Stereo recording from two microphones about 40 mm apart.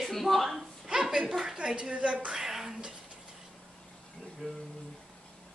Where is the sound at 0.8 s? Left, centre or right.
Centre.